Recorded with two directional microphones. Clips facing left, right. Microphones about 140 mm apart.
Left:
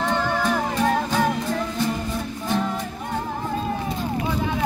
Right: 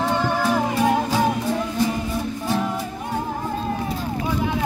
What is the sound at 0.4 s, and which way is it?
Music, 10° right (ahead or behind).